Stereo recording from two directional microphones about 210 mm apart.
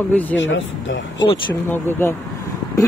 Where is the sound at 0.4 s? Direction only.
65° left (ahead or behind).